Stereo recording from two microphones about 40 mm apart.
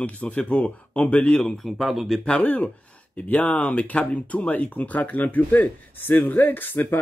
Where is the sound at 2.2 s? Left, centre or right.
Left.